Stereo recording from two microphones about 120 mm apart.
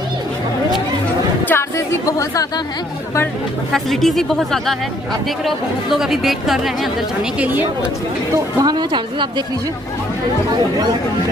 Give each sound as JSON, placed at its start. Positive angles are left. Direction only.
{"t": 1.5, "sound": "chatter", "side_deg": 25}
{"t": 3.7, "sound": "speech", "side_deg": 0}
{"t": 5.9, "sound": "speech", "side_deg": -5}
{"t": 7.3, "sound": "speech", "side_deg": -15}
{"t": 8.5, "sound": "a woman's voice", "side_deg": -35}